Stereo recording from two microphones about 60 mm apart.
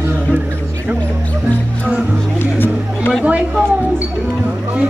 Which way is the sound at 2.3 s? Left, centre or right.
Left.